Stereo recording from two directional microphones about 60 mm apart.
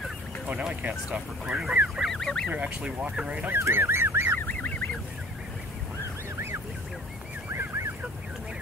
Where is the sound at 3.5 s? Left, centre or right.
Right.